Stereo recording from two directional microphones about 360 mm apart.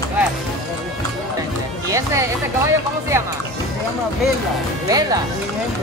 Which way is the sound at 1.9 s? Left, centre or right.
Centre.